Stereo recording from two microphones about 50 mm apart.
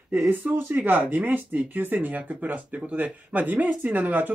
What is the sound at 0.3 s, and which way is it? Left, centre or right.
Speech, right.